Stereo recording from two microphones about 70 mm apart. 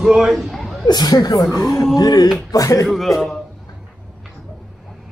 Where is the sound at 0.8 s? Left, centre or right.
Left.